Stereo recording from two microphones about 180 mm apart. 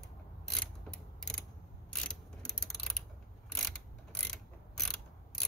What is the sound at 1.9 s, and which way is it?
Mechanisms, 5° left (ahead or behind).